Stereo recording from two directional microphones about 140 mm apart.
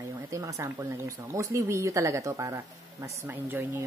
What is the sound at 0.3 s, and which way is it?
Speech, 25° right (ahead or behind).